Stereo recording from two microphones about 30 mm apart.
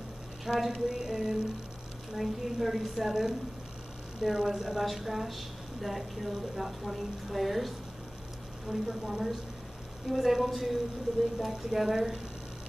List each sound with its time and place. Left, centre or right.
0.5 s a woman's voice: centre
8.7 s a woman's voice: right
10.0 s a woman's voice: centre